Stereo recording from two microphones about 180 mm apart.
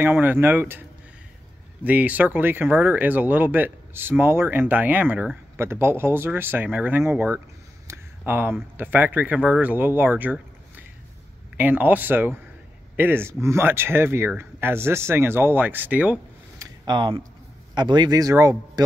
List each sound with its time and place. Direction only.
0.0 s speech: 10° right (ahead or behind)
1.9 s speech: 10° right (ahead or behind)
16.8 s speech: 25° right (ahead or behind)